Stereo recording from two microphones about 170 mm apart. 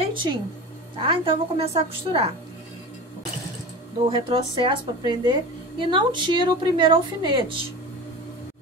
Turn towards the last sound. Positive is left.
turn(degrees=-30)  # may be behind; listen again after turning